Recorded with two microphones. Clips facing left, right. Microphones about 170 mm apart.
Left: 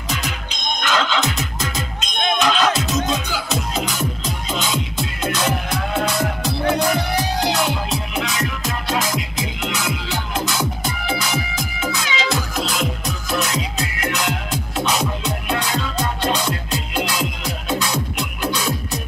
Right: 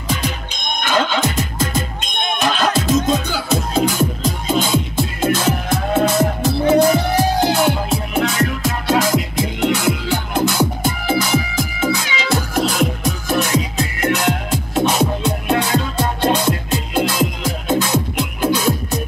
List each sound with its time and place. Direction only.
0.8 s music: 50° right (ahead or behind)